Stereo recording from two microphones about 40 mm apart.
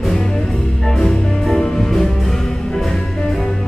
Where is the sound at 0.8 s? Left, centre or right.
Centre.